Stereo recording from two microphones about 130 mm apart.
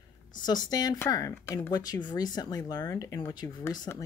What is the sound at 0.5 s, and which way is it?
Speech, 30° left (ahead or behind).